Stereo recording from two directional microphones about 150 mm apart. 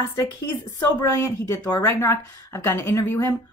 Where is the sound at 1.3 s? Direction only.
20° left (ahead or behind).